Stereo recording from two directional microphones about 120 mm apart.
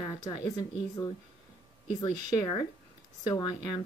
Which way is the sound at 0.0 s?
35° left (ahead or behind).